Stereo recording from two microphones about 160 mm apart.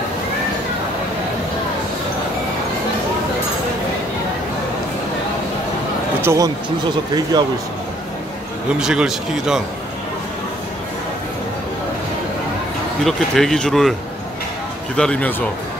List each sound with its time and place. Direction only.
6.2 s speech: 20° right (ahead or behind)
8.7 s speech: 5° right (ahead or behind)
13.0 s speech: 5° left (ahead or behind)
15.0 s speech: 5° left (ahead or behind)